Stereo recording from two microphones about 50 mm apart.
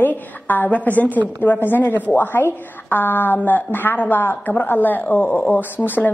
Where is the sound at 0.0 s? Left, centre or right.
Left.